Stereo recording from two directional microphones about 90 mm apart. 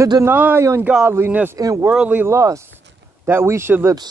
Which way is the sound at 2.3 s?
35° right (ahead or behind).